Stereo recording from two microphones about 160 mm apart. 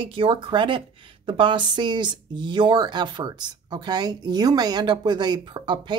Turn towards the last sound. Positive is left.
turn(degrees=-30)  # may be behind; listen again after turning